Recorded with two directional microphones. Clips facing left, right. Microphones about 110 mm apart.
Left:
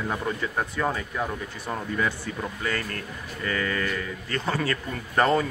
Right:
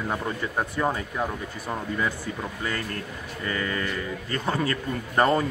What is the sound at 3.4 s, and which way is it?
Speech, 25° right (ahead or behind).